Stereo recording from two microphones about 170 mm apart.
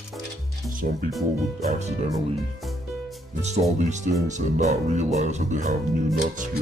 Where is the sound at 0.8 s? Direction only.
55° right (ahead or behind).